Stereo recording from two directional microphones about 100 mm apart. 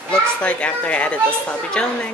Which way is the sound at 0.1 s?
10° left (ahead or behind).